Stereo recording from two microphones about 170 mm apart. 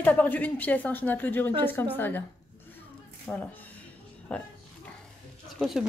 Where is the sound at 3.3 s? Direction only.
15° left (ahead or behind).